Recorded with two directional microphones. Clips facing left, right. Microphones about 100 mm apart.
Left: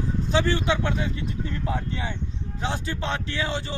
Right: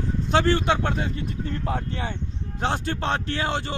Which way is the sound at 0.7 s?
40° right (ahead or behind).